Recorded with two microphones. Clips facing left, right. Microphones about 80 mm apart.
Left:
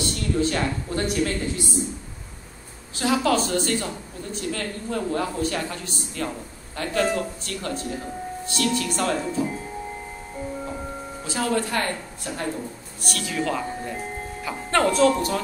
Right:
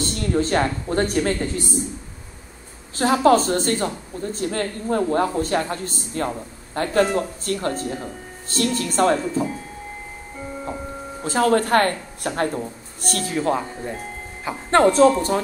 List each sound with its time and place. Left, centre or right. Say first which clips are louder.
0.0 s speech: right 2 dB; right
3.0 s speech: right 6 dB; right
11.2 s a woman's voice: right 7 dB; right
12.5 s speech: right 4 dB; right